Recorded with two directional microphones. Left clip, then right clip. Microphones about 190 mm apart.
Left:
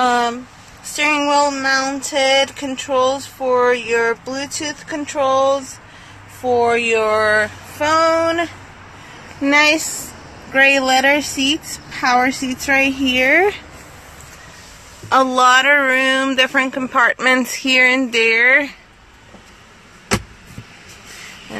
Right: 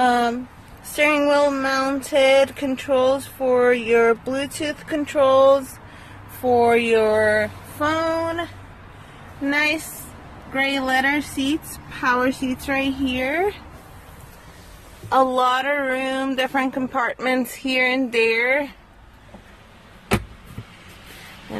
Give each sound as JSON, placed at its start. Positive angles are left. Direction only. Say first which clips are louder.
{"t": 0.0, "sound": "a sound", "louder": "left 2 dB", "side_deg": -30}
{"t": 0.9, "sound": "speech", "louder": "left 2 dB", "side_deg": -35}
{"t": 7.2, "sound": "speech", "louder": "left 4 dB", "side_deg": -10}
{"t": 7.8, "sound": "speech", "louder": "left 7 dB", "side_deg": 20}
{"t": 9.5, "sound": "speech", "louder": "left 8 dB", "side_deg": 30}
{"t": 15.0, "sound": "speech", "louder": "left 5 dB", "side_deg": 10}